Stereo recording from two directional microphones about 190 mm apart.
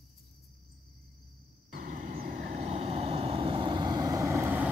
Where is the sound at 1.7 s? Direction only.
50° right (ahead or behind).